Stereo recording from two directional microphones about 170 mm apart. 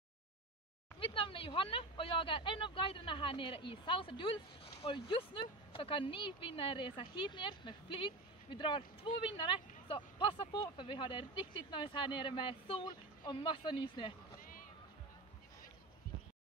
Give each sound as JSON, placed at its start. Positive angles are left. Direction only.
{"t": 0.9, "sound": "a woman's voice", "side_deg": 30}